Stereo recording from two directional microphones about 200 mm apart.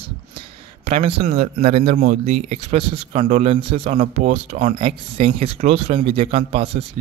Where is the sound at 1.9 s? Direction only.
45° right (ahead or behind).